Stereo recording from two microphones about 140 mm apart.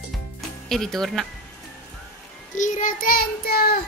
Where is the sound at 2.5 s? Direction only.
65° left (ahead or behind); by 3.8 s 90° left.